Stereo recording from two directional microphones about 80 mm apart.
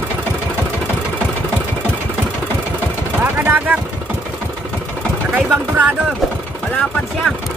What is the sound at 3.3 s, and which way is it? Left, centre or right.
Vehicle, right.